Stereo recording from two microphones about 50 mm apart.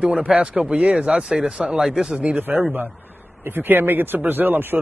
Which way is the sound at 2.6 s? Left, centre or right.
Right.